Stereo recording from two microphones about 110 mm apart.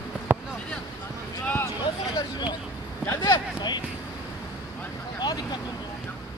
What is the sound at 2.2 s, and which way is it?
Vehicle, 40° left (ahead or behind).